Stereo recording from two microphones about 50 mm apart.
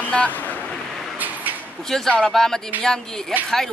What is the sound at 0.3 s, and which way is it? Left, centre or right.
Vehicle, left.